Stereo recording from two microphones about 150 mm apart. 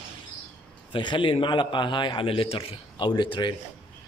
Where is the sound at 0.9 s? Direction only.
35° left (ahead or behind).